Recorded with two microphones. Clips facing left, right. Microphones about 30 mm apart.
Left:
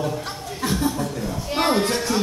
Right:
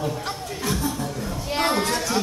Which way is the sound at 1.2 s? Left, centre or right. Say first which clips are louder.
Left 1 dB; centre.